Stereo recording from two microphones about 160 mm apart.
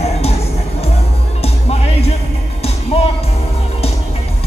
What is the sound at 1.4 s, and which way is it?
Music, 40° left (ahead or behind).